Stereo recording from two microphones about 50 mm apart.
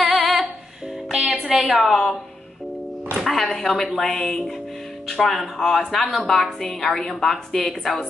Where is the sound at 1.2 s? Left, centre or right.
Right.